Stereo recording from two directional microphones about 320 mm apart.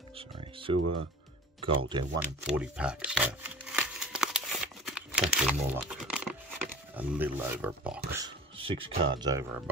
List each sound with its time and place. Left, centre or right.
0.1 s music: centre
1.8 s speech: centre
2.4 s a sound: centre
6.9 s speech: centre